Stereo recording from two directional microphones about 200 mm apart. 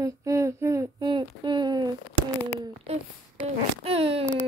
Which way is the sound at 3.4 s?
30° right (ahead or behind).